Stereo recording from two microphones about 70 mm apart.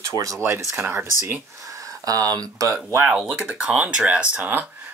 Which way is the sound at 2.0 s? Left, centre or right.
Right.